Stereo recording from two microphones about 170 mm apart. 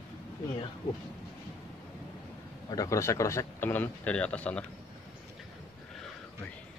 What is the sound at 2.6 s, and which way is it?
Speech, 20° left (ahead or behind).